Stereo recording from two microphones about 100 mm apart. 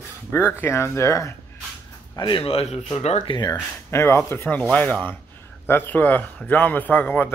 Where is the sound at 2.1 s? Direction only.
50° left (ahead or behind).